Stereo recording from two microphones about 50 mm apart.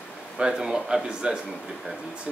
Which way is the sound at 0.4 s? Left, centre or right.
Centre.